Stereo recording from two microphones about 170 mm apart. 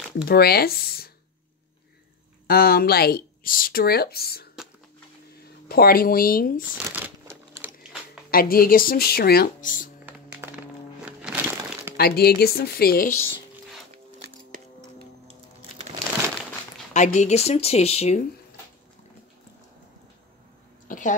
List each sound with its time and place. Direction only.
0.2 s speech: 65° left (ahead or behind)
2.4 s speech: 65° left (ahead or behind)
5.7 s speech: 60° left (ahead or behind)
6.9 s crumpling: 10° right (ahead or behind)
8.3 s speech: 60° left (ahead or behind)
10.0 s music: 10° right (ahead or behind)
11.1 s crumpling: 5° right (ahead or behind)
12.0 s speech: 70° left (ahead or behind)
16.9 s speech: 45° left (ahead or behind)
20.9 s a sound: 50° left (ahead or behind)